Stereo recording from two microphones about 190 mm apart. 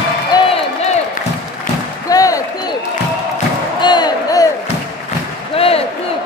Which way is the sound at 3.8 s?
20° left (ahead or behind).